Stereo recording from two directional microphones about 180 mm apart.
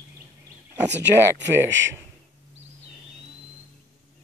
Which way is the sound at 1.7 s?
90° right.